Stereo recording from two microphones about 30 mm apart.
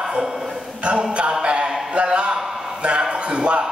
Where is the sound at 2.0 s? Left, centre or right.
Right.